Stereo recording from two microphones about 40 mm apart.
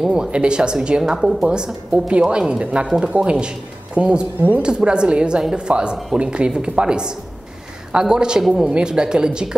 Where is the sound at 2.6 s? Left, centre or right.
Right.